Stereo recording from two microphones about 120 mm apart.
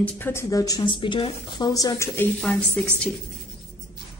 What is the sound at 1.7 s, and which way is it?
A woman's voice, 30° left (ahead or behind).